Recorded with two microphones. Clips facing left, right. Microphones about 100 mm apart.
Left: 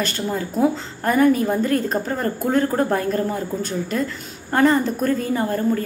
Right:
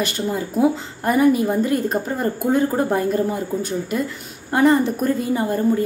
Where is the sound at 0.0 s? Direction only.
10° right (ahead or behind).